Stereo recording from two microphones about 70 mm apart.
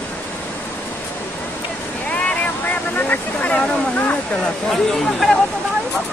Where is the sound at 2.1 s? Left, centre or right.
Left.